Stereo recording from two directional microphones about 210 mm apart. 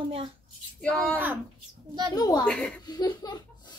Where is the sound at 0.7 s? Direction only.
5° left (ahead or behind).